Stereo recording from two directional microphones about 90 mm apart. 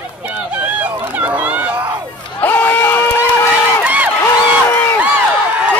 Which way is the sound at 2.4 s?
25° left (ahead or behind).